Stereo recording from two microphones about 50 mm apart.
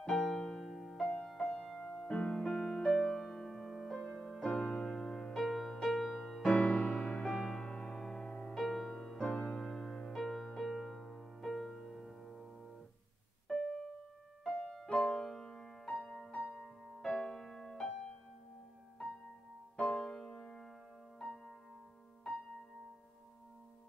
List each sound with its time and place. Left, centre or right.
0.0 s music: centre
5.4 s music: centre
6.4 s music: left
7.2 s music: centre
8.9 s music: centre
12.2 s music: centre
13.5 s keyboard: centre
14.5 s music: centre
14.9 s music: centre
16.6 s music: centre
19.8 s music: centre